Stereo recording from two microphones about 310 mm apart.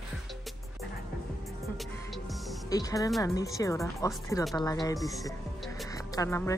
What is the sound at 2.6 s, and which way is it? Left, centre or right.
Speech, centre.